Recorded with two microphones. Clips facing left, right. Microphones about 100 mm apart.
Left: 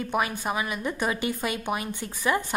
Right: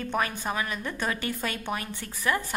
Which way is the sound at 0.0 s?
10° left (ahead or behind).